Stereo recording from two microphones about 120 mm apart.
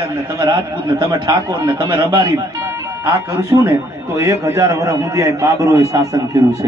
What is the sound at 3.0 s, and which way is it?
A man's voice, 25° right (ahead or behind).